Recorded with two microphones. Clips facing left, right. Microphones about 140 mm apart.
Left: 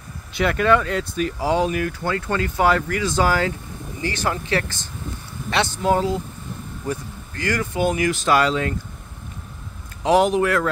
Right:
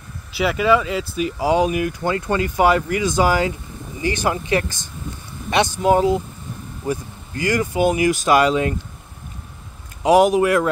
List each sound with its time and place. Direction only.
0.3 s speech: 5° right (ahead or behind)
10.0 s speech: 10° right (ahead or behind)